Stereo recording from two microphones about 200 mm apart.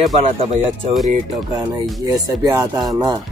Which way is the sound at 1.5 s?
15° right (ahead or behind).